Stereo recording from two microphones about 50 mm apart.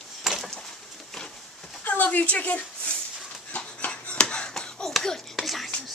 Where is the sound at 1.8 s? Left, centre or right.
Left.